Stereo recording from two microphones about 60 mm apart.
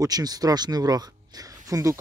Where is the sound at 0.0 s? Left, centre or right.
Right.